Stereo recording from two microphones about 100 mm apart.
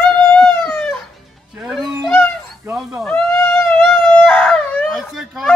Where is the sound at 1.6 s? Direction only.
Centre (ahead or behind).